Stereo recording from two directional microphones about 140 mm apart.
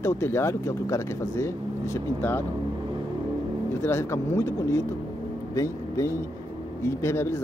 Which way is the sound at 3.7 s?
20° left (ahead or behind).